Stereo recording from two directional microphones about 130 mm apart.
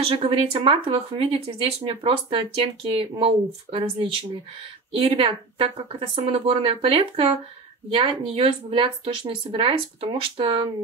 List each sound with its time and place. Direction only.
0.0 s speech: 45° right (ahead or behind)